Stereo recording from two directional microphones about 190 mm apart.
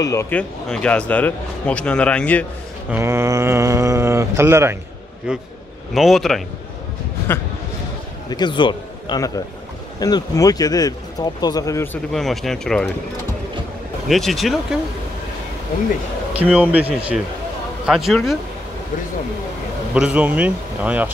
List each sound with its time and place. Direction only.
0.0 s a man's voice: 15° left (ahead or behind)
2.9 s speech: 15° right (ahead or behind)
5.9 s speech: centre (ahead or behind)
8.3 s a man's voice: 25° left (ahead or behind)
12.1 s speech: centre (ahead or behind)
14.0 s speech: centre (ahead or behind)
16.4 s speech: 5° right (ahead or behind)
19.9 s speech: 5° right (ahead or behind)